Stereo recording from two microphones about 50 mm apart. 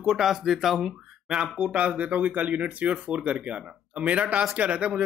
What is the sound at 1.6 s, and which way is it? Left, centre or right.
Speech, right.